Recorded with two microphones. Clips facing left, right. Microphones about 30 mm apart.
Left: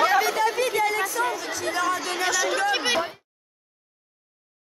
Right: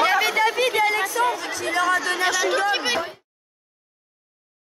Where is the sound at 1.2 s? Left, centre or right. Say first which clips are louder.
Right 3 dB; centre.